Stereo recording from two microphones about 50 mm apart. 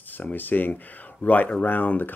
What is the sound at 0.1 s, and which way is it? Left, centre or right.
Speech, left.